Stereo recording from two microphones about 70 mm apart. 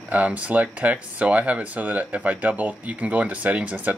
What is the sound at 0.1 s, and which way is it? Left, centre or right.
Speech, right.